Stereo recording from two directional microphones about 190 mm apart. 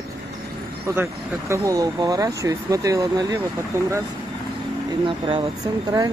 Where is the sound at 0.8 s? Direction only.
15° right (ahead or behind).